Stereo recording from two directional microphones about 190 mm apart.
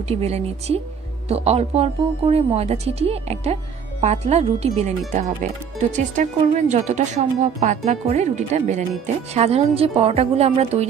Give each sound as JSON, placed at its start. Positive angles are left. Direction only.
{"t": 0.1, "sound": "speech", "side_deg": -35}